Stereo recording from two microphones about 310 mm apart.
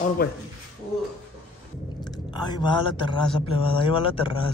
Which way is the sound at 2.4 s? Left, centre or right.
Centre.